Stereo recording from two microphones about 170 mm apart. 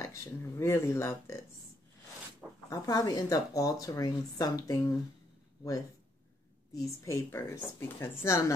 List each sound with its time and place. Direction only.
0.0 s speech: 15° left (ahead or behind)
2.7 s speech: 20° left (ahead or behind)
6.7 s speech: 20° left (ahead or behind)